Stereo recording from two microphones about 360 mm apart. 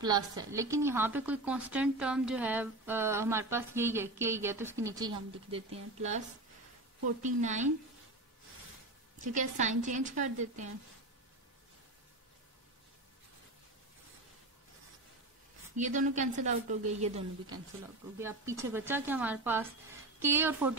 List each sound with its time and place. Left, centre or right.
0.0 s a woman's voice: centre
9.2 s a woman's voice: centre
15.7 s a woman's voice: right